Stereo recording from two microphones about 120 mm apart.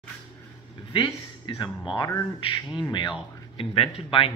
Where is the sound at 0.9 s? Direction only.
40° left (ahead or behind).